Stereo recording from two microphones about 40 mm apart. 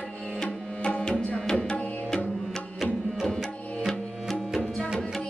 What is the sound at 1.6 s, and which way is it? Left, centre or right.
Tabla, centre.